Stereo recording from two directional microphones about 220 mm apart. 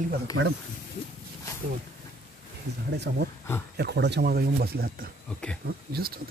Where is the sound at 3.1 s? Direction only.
55° right (ahead or behind).